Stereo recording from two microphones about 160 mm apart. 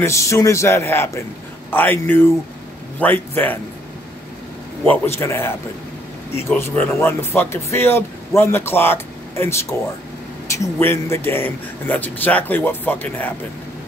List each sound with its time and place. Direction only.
0.0 s speech: 20° left (ahead or behind)
4.8 s speech: 15° left (ahead or behind)
6.5 s speech: 10° left (ahead or behind)